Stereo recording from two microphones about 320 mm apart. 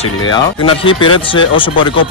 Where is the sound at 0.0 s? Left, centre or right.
Centre.